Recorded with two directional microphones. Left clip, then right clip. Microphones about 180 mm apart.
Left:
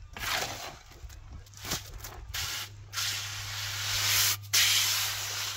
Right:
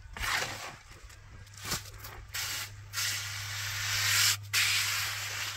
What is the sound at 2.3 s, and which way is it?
Spray, 30° left (ahead or behind).